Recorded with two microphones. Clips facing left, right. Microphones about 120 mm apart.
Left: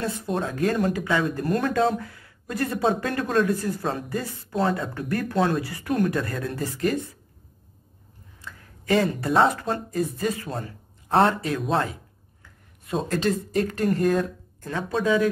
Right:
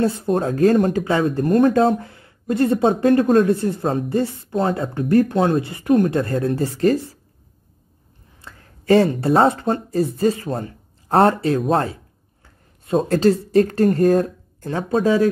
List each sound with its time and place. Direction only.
0.0 s speech: 25° right (ahead or behind)
0.3 s speech: 40° right (ahead or behind)
1.5 s speech: 40° right (ahead or behind)
3.3 s speech: 40° right (ahead or behind)
3.5 s speech: 25° right (ahead or behind)
4.5 s speech: 45° right (ahead or behind)
5.0 s speech: 30° right (ahead or behind)
8.4 s a sound: 35° right (ahead or behind)
9.8 s speech: 30° right (ahead or behind)
13.1 s speech: 35° right (ahead or behind)